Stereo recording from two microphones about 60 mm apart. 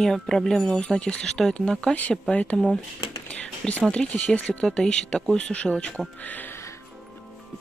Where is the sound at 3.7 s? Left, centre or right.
Left.